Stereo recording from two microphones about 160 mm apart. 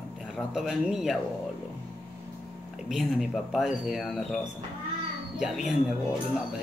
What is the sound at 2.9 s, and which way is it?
A man's voice, 5° right (ahead or behind).